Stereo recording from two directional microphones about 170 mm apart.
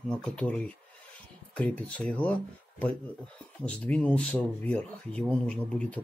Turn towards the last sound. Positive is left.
turn(degrees=5)  # may be behind; listen again after turning